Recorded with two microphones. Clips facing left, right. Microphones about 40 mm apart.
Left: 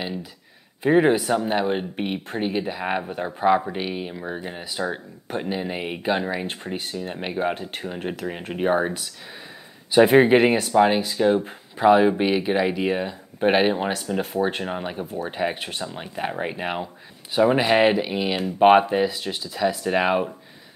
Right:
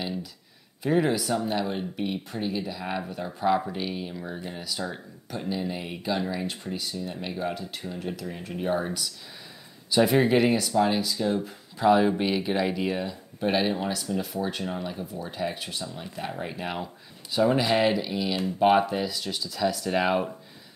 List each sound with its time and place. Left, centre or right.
0.0 s speech: left
11.8 s speech: left